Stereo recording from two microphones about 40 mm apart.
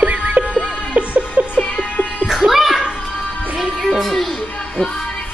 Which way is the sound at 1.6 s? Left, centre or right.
Left.